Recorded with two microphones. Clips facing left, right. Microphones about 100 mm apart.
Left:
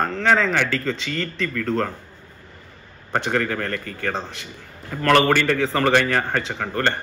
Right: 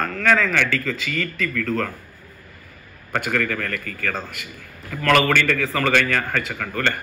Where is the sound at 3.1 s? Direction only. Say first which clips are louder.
Left 1 dB; 30° left (ahead or behind).